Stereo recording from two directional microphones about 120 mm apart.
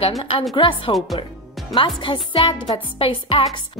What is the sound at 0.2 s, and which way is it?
Speech, 50° left (ahead or behind).